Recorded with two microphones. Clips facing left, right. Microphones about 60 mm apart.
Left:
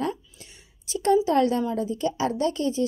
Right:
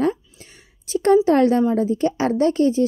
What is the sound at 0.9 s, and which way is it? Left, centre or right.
A woman's voice, right.